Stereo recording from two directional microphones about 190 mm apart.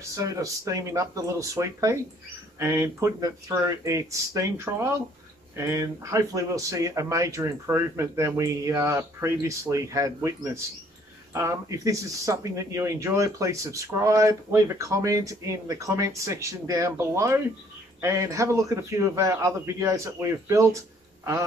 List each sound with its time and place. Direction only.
0.1 s speech: 15° right (ahead or behind)